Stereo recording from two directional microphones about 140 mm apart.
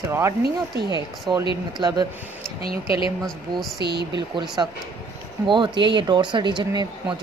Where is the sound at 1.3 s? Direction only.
30° right (ahead or behind).